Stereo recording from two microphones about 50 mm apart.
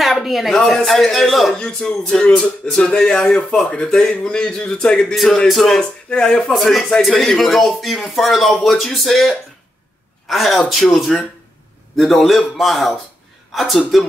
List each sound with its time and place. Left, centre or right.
0.2 s speech: centre
1.5 s speech: centre
5.1 s speech: centre
5.8 s speech: centre
6.5 s speech: centre